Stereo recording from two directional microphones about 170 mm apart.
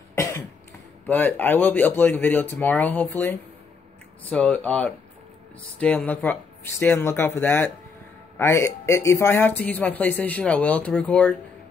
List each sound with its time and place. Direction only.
0.1 s cough: 15° left (ahead or behind)
1.0 s speech: 10° left (ahead or behind)